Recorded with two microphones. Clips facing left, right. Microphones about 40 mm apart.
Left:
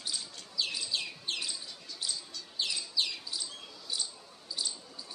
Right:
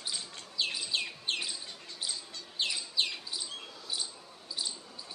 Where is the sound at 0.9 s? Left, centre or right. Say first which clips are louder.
Right 2 dB; right.